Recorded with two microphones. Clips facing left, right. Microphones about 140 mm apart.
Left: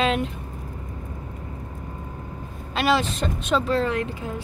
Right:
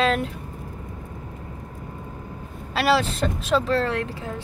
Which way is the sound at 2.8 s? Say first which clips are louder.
Right 1 dB; 5° right (ahead or behind).